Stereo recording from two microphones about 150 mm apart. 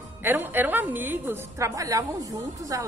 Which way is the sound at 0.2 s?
15° right (ahead or behind).